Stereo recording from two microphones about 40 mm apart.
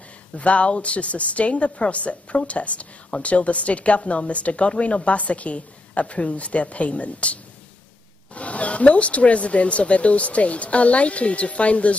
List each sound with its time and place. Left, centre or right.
0.4 s a woman's voice: left
8.4 s a woman's voice: left